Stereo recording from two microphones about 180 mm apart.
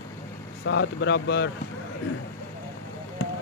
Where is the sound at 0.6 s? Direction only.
80° left.